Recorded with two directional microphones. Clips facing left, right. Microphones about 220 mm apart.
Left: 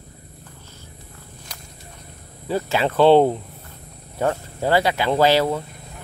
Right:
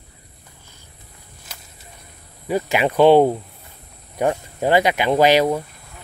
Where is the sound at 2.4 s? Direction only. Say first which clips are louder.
Right 2 dB; 15° right (ahead or behind).